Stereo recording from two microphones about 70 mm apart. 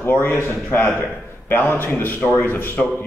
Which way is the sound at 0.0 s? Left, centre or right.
Left.